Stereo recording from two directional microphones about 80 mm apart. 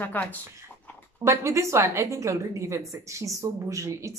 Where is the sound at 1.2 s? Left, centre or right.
Right.